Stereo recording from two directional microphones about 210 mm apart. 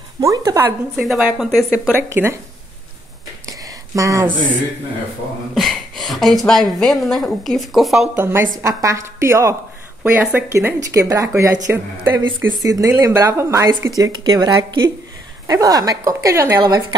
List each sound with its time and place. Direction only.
0.2 s a woman's voice: 15° right (ahead or behind); by 2.0 s centre (ahead or behind)
2.0 s speech: 10° right (ahead or behind)
3.4 s a sound: 15° right (ahead or behind)
5.5 s a woman's voice: centre (ahead or behind); by 16.8 s 15° right (ahead or behind)